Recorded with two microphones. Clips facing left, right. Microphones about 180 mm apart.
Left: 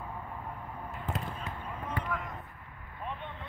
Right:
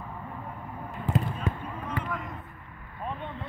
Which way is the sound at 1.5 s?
50° right (ahead or behind).